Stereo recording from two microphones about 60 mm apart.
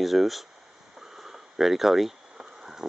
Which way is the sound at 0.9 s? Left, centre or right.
Centre.